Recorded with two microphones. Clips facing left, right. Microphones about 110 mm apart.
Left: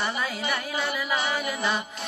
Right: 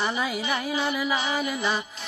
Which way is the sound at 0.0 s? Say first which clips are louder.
Right 2 dB; 10° right (ahead or behind).